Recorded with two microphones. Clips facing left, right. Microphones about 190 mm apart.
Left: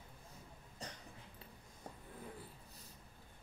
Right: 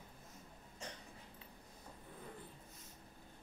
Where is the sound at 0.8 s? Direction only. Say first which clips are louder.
Even; 35° left (ahead or behind).